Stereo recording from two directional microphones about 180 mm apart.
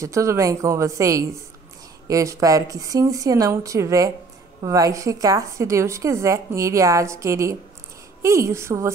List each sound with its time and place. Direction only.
0.0 s a woman's voice: 15° right (ahead or behind)